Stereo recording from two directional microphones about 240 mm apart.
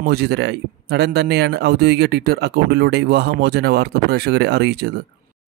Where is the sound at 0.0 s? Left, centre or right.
Right.